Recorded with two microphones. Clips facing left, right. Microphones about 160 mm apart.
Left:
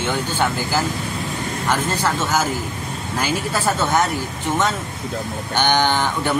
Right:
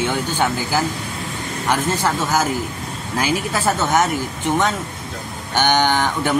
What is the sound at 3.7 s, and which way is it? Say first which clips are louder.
Speech: right 1 dB; 15° right (ahead or behind).